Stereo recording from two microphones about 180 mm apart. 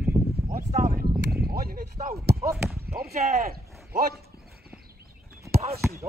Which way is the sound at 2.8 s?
60° right (ahead or behind).